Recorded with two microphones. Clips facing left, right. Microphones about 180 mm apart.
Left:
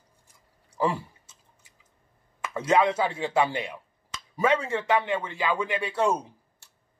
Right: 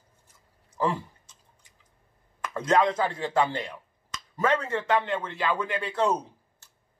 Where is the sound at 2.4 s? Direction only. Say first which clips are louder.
Left 1 dB; 10° left (ahead or behind).